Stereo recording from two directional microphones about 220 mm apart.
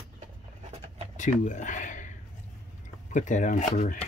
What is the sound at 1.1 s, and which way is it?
Speech, 35° left (ahead or behind).